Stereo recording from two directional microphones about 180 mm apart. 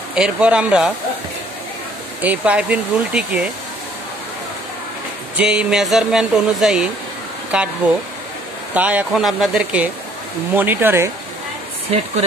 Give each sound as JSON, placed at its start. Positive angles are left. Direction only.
{"t": 0.1, "sound": "speech", "side_deg": -5}
{"t": 2.2, "sound": "speech", "side_deg": -5}
{"t": 5.4, "sound": "speech", "side_deg": -5}